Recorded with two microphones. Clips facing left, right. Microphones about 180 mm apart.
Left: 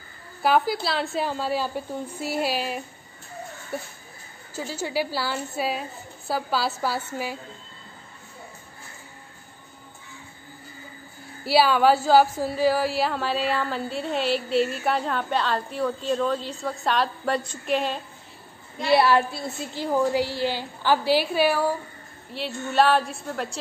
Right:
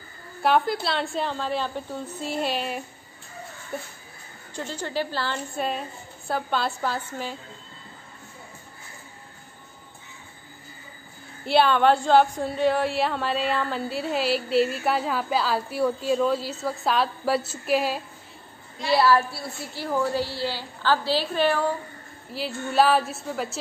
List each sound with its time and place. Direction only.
0.4 s a woman's voice: centre (ahead or behind)
11.4 s speech: 5° left (ahead or behind)
18.9 s a woman's voice: 20° left (ahead or behind); by 23.6 s centre (ahead or behind)